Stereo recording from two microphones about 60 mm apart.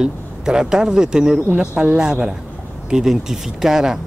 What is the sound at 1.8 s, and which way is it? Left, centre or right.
A man's voice, centre.